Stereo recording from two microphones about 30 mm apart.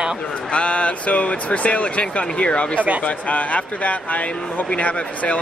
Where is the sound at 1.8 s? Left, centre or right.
Left.